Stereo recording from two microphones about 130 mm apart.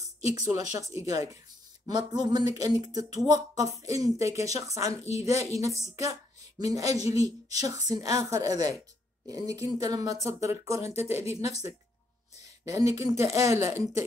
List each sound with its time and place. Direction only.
0.5 s speech: 25° right (ahead or behind)
12.6 s speech: 25° right (ahead or behind)